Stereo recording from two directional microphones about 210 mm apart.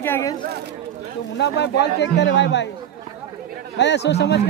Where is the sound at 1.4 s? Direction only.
55° left (ahead or behind).